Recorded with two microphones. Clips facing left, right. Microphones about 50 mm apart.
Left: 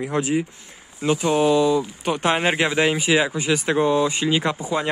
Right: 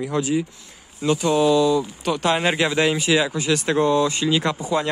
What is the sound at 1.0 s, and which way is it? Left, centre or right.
Speech, centre.